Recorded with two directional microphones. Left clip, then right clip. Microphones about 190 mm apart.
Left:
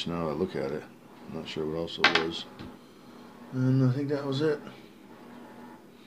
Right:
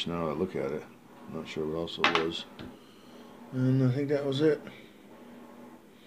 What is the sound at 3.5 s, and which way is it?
A man's voice, 20° right (ahead or behind).